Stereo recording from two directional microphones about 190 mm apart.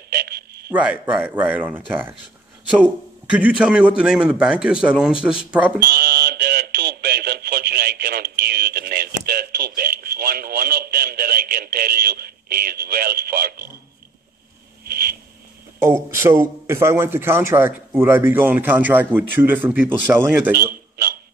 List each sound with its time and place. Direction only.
0.1 s a sound: 55° right (ahead or behind)
0.8 s a man's voice: 5° right (ahead or behind)
3.3 s a man's voice: 5° right (ahead or behind)
5.8 s radio: 55° right (ahead or behind)
15.8 s a man's voice: 15° right (ahead or behind)
20.5 s a sound: 55° right (ahead or behind)